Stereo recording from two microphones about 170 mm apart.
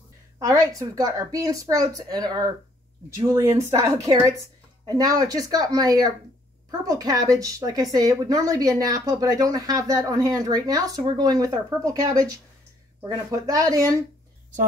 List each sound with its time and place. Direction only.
0.4 s speech: 20° right (ahead or behind)